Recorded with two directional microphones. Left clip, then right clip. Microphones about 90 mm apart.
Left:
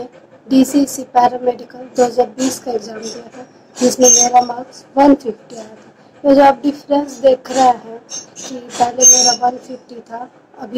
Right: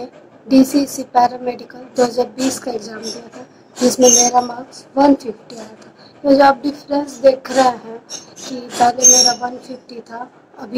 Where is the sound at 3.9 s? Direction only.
35° left (ahead or behind).